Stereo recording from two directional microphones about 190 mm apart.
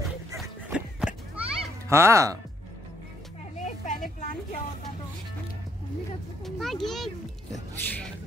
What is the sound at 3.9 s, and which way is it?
Vehicle, 40° left (ahead or behind).